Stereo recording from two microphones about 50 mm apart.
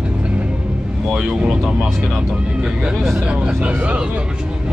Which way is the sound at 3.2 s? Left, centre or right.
Centre.